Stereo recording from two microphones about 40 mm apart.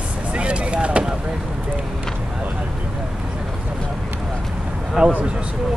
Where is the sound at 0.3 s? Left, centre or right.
Right.